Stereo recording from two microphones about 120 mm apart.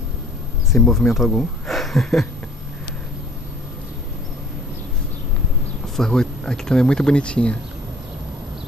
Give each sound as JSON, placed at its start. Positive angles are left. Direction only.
{"t": 0.7, "sound": "speech", "side_deg": 0}
{"t": 5.9, "sound": "speech", "side_deg": 5}